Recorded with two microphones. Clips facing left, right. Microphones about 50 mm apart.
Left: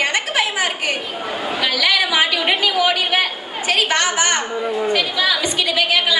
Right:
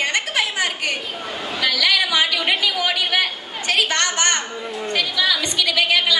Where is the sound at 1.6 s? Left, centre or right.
Centre.